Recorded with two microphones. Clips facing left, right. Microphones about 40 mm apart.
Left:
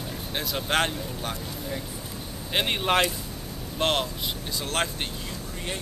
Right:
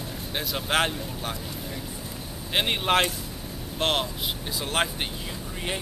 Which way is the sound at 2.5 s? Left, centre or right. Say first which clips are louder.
Right 1 dB; centre.